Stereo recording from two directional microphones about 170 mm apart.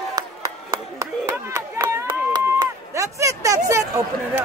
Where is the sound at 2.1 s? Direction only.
25° right (ahead or behind).